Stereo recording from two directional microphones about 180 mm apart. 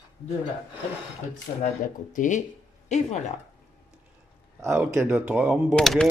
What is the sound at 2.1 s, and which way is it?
Speech, 45° left (ahead or behind).